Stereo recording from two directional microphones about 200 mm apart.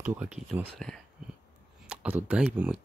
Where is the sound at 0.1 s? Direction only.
5° right (ahead or behind).